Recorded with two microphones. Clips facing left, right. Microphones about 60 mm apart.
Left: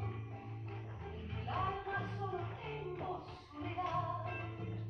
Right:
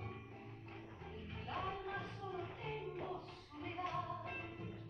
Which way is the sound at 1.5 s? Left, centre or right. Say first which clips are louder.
Left 5 dB; left.